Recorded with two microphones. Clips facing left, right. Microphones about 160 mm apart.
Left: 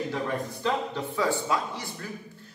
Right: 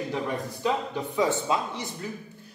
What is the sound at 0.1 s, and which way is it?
Speech, 15° right (ahead or behind).